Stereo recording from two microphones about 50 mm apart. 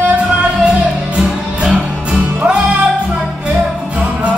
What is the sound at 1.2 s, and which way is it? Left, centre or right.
Music, right.